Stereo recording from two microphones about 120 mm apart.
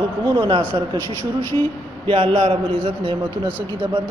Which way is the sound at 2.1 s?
55° right (ahead or behind).